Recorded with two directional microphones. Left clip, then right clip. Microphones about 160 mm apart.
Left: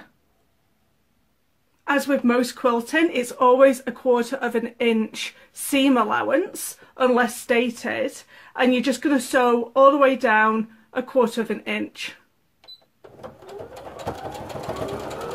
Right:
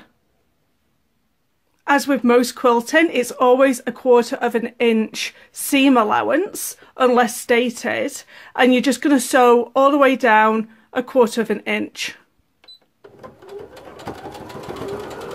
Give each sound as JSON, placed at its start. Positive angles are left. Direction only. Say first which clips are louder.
{"t": 1.9, "sound": "speech", "louder": "right 5 dB", "side_deg": -55}